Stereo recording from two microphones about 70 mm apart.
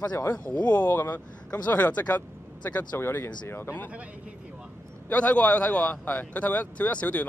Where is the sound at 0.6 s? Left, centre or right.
Left.